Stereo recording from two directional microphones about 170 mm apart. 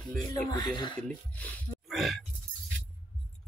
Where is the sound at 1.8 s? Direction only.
Centre (ahead or behind).